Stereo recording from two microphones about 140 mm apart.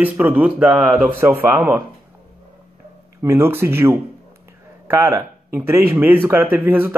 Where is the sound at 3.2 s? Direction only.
20° right (ahead or behind).